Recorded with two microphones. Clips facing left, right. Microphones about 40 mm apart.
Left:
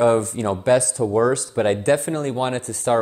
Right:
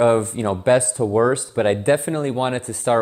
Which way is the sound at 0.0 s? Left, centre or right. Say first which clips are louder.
Right 1 dB; right.